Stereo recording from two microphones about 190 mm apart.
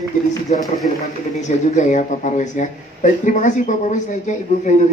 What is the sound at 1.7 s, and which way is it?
Speech, 40° left (ahead or behind).